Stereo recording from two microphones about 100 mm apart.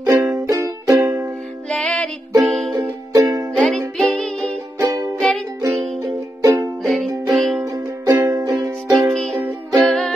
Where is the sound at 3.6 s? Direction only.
5° left (ahead or behind).